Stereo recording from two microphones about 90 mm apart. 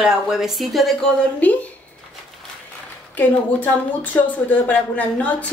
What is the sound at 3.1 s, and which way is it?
Speech, 20° left (ahead or behind).